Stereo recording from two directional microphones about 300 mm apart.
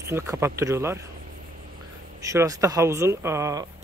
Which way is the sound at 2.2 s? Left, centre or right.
Centre.